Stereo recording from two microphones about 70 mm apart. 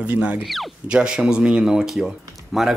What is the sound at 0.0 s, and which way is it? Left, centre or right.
Speech, centre.